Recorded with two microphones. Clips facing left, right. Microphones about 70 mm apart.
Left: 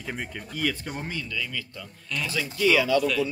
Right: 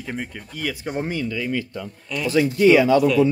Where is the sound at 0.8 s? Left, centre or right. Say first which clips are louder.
Right 8 dB; right.